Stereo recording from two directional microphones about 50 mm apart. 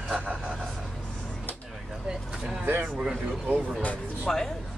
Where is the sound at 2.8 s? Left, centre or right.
Centre.